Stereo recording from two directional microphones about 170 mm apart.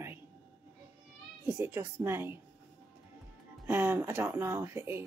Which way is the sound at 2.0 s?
15° right (ahead or behind).